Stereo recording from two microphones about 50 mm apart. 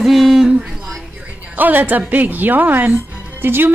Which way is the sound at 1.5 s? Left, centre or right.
Right.